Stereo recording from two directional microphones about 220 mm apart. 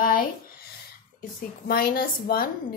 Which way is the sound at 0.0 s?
40° left (ahead or behind).